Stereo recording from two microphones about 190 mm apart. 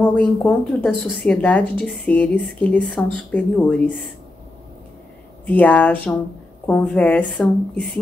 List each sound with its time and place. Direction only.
0.0 s speech: 10° left (ahead or behind)
5.4 s speech: 10° left (ahead or behind)